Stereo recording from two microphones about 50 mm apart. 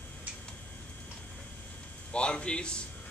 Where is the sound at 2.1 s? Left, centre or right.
Left.